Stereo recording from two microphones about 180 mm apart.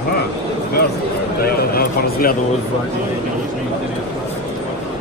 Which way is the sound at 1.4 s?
55° left (ahead or behind).